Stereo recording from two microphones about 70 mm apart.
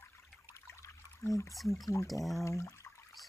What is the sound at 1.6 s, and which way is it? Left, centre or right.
Speech, centre.